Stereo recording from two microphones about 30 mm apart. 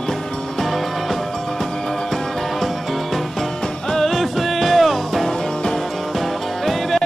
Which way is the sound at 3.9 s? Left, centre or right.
Centre.